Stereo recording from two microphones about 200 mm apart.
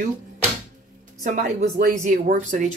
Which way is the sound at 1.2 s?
40° right (ahead or behind).